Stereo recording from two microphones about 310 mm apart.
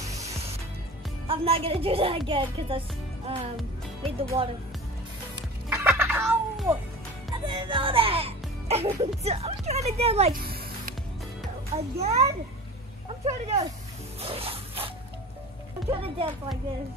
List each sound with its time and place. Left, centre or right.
1.2 s speech: centre
4.2 s speech: centre
5.9 s music: centre
7.2 s music: centre
11.7 s a child's voice: centre
14.2 s a sound: centre
15.9 s speech: centre